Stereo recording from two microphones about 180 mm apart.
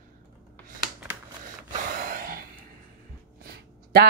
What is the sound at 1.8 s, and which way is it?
Gasp, 50° right (ahead or behind).